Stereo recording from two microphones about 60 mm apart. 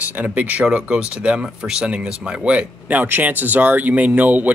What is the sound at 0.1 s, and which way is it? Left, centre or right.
Speech, right.